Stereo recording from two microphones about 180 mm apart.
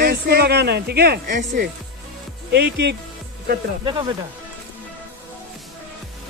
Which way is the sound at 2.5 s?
70° right (ahead or behind).